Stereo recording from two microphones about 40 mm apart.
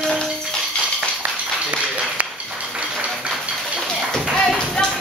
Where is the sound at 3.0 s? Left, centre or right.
Right.